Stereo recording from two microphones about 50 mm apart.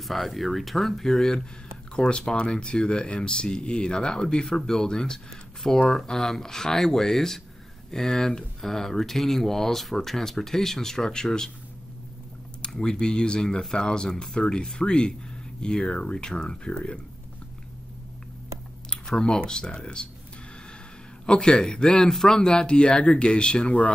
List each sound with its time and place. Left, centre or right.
0.0 s speech: centre
12.7 s speech: centre
18.9 s speech: centre
21.3 s speech: centre